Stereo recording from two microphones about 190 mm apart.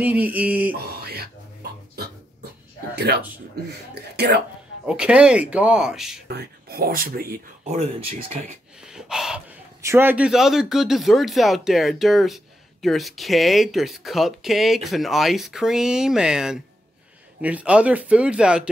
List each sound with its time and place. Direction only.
0.0 s speech: 10° right (ahead or behind)
0.7 s mantra: 55° right (ahead or behind)
3.1 s speech: 55° right (ahead or behind)
4.8 s speech: 5° right (ahead or behind)
6.2 s speech: 55° right (ahead or behind)
7.6 s speech: 35° right (ahead or behind)
8.8 s gasp: 5° right (ahead or behind)
9.8 s speech: 15° right (ahead or behind)